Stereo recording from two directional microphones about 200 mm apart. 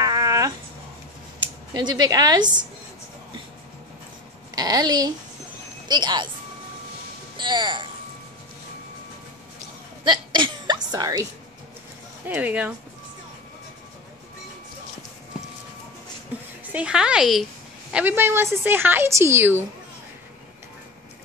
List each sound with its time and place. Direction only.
0.0 s a sound: 15° right (ahead or behind)
1.7 s a woman's voice: 20° right (ahead or behind)
4.6 s a woman's voice: 20° right (ahead or behind)
7.3 s speech: 20° right (ahead or behind)
10.0 s hiccup: 25° right (ahead or behind)
12.3 s a woman's voice: 10° right (ahead or behind)
16.7 s a woman's voice: 5° right (ahead or behind)